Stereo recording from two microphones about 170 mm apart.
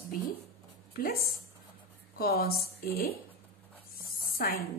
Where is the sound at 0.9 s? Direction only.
60° left (ahead or behind).